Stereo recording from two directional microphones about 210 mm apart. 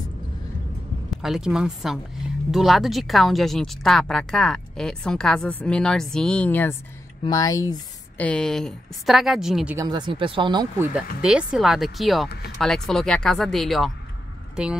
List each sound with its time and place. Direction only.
1.2 s speech: centre (ahead or behind); by 7.7 s 15° left (ahead or behind)
8.2 s speech: 5° left (ahead or behind)
9.8 s speech: 20° right (ahead or behind)
11.2 s speech: 5° right (ahead or behind)